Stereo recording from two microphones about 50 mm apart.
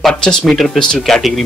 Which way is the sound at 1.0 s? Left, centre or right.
Centre.